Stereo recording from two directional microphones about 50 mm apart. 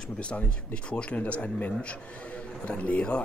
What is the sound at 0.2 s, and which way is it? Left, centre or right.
Speech, left.